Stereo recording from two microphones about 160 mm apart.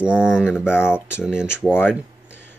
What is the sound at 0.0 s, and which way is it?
Speech, 5° right (ahead or behind).